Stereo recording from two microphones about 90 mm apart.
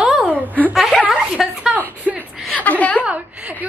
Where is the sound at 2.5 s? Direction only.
15° left (ahead or behind).